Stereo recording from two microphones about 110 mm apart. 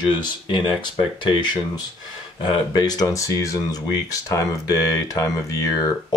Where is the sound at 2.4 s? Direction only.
40° left (ahead or behind).